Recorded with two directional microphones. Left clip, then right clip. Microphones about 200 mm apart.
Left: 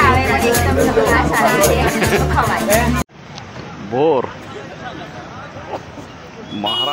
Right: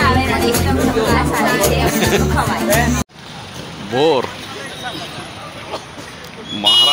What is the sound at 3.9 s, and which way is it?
Music, 5° right (ahead or behind).